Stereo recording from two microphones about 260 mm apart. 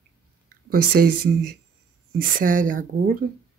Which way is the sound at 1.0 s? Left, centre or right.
Right.